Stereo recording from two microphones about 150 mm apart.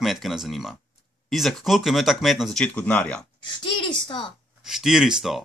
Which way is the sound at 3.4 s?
30° left (ahead or behind).